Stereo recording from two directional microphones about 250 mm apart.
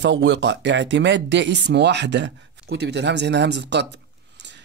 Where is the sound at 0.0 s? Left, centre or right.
Right.